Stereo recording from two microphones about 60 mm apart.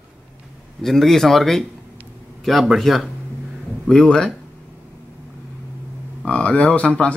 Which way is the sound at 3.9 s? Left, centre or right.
Centre.